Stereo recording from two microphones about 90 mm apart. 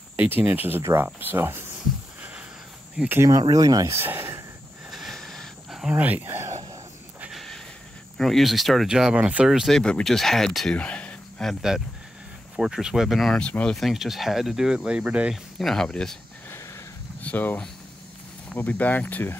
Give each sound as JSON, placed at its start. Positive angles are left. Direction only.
{"t": 0.1, "sound": "cricket", "side_deg": -20}
{"t": 3.3, "sound": "speech", "side_deg": -40}
{"t": 4.0, "sound": "a sound", "side_deg": -25}
{"t": 4.9, "sound": "a sound", "side_deg": 0}
{"t": 5.9, "sound": "speech", "side_deg": -20}
{"t": 7.2, "sound": "a sound", "side_deg": 0}
{"t": 8.2, "sound": "speech", "side_deg": 0}
{"t": 9.5, "sound": "speech", "side_deg": 0}
{"t": 10.8, "sound": "a sound", "side_deg": 15}
{"t": 11.7, "sound": "speech", "side_deg": -5}
{"t": 13.4, "sound": "speech", "side_deg": 10}
{"t": 13.7, "sound": "speech", "side_deg": 0}
{"t": 15.6, "sound": "speech", "side_deg": 5}
{"t": 17.2, "sound": "speech", "side_deg": 20}